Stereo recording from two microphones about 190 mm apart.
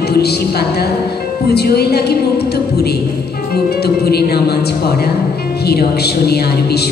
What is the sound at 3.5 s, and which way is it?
A woman's voice, 55° left (ahead or behind).